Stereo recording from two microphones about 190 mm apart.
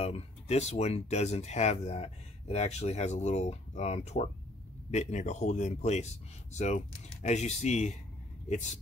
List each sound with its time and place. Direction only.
0.0 s speech: 35° left (ahead or behind)